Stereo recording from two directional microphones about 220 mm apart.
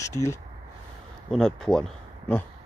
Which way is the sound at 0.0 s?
15° left (ahead or behind).